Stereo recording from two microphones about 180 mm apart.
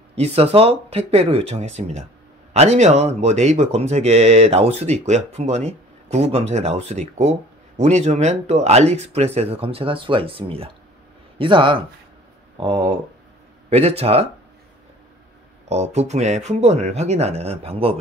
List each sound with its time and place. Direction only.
0.1 s speech: 35° right (ahead or behind)
15.7 s speech: 35° right (ahead or behind)